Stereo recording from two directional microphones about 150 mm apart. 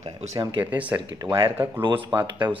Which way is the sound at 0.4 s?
35° right (ahead or behind).